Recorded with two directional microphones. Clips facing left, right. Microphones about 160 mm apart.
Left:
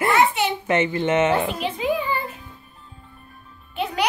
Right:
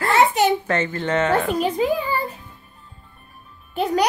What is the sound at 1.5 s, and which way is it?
Music, 40° right (ahead or behind).